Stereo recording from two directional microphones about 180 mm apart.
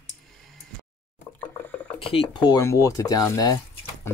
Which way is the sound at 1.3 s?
10° left (ahead or behind).